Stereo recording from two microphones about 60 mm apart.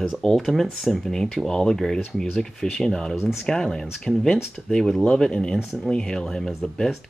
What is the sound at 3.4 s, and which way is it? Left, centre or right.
Speech, centre.